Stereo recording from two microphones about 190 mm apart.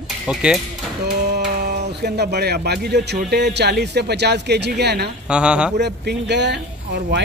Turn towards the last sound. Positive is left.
turn(degrees=-65)  # may be behind; listen again after turning